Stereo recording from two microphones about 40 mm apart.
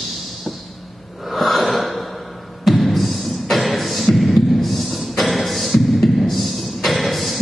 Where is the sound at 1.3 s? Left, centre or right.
Centre.